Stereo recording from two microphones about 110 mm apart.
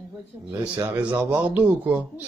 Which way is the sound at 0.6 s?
15° right (ahead or behind).